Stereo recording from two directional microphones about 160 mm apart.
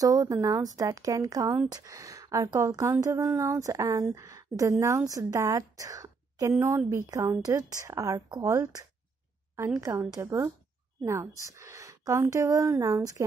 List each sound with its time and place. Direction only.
0.0 s a woman's voice: 20° right (ahead or behind)
6.5 s a woman's voice: 10° right (ahead or behind)